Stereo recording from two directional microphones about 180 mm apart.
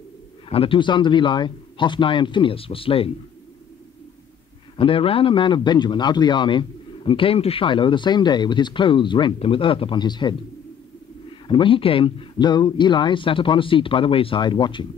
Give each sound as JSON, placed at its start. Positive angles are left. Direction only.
{"t": 0.5, "sound": "a man's voice", "side_deg": 30}
{"t": 4.7, "sound": "a man's voice", "side_deg": 30}
{"t": 11.4, "sound": "a man's voice", "side_deg": 30}